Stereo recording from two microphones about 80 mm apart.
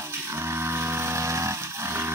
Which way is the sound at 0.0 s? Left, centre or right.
Right.